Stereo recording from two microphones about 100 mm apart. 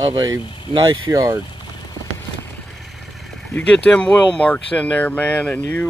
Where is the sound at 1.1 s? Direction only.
30° right (ahead or behind).